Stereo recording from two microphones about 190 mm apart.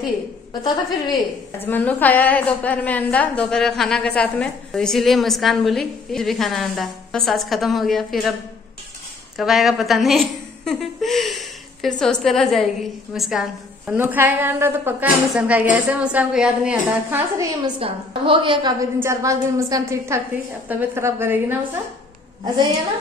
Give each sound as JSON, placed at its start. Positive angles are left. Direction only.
{"t": 0.5, "sound": "a woman's voice", "side_deg": 20}
{"t": 1.6, "sound": "a woman's voice", "side_deg": 10}
{"t": 9.4, "sound": "a woman's voice", "side_deg": 0}
{"t": 17.7, "sound": "a woman's voice", "side_deg": -30}